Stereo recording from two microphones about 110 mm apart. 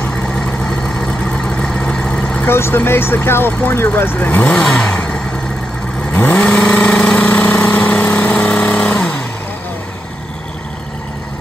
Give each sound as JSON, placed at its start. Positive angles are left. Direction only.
{"t": 0.7, "sound": "vehicle", "side_deg": 5}
{"t": 2.4, "sound": "speech", "side_deg": 20}
{"t": 6.1, "sound": "vehicle", "side_deg": 15}